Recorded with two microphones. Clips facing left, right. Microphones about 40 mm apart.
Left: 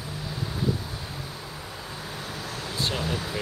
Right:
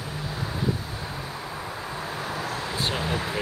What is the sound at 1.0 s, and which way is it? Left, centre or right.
Vehicle, right.